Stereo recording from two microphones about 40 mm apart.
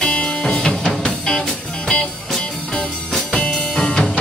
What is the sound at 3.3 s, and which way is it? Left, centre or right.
Music, left.